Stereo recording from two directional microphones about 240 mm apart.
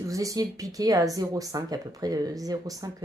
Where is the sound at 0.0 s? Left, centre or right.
Centre.